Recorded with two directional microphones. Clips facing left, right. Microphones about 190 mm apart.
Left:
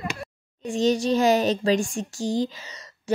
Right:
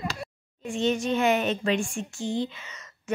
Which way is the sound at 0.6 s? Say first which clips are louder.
Left 4 dB; 40° left (ahead or behind).